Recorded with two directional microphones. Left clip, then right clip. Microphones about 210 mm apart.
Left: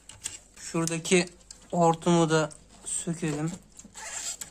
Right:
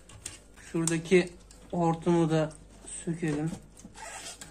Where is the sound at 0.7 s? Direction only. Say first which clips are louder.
Even; 60° left (ahead or behind).